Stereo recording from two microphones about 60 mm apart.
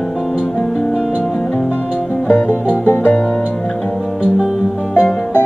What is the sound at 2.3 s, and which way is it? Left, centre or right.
Music, left.